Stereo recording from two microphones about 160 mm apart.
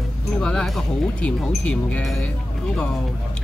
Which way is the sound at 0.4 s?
5° left (ahead or behind).